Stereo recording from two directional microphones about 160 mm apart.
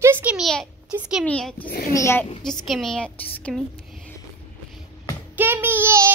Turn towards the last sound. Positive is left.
turn(degrees=-15)  # may be behind; listen again after turning